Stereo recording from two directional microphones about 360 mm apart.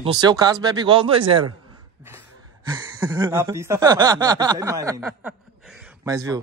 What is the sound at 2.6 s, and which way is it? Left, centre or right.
Speech, centre.